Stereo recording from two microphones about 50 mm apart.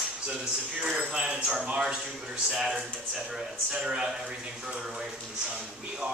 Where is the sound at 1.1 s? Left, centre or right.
Centre.